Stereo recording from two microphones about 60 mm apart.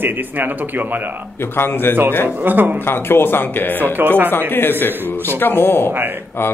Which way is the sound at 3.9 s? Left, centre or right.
Right.